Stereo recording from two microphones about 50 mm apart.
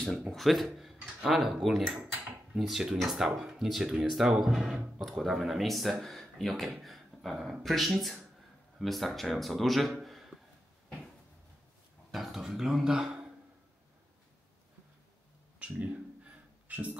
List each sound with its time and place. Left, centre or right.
0.3 s speech: centre
0.7 s a sound: centre
1.6 s speech: centre
10.0 s a sound: centre
12.1 s speech: centre
12.9 s speech: centre
15.6 s speech: right